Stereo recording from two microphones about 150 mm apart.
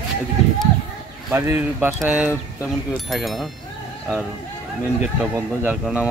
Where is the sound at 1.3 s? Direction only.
15° right (ahead or behind); by 3.4 s centre (ahead or behind).